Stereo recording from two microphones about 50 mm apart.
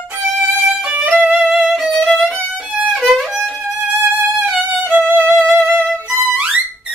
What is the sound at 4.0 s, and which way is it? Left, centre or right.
Music, right.